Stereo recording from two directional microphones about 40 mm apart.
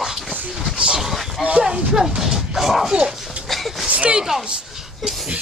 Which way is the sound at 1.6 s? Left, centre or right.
Centre.